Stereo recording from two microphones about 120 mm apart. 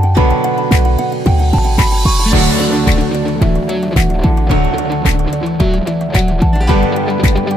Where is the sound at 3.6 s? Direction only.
Centre (ahead or behind).